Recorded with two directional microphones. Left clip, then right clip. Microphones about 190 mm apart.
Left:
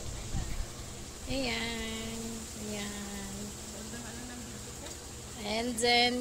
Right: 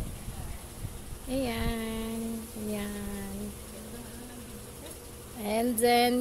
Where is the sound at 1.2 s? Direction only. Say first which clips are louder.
Right 2 dB; 40° right (ahead or behind).